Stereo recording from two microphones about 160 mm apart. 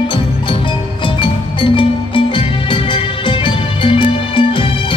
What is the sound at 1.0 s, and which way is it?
Music, 30° left (ahead or behind).